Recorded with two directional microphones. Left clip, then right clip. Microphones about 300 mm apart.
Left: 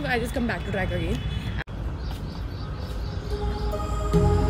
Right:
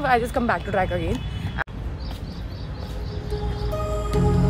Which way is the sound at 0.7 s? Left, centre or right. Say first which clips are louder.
Right 5 dB; right.